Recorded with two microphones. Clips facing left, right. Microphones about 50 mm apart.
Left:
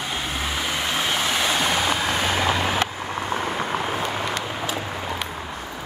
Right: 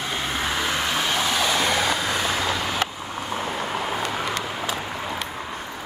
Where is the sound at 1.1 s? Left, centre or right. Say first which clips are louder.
Even; left.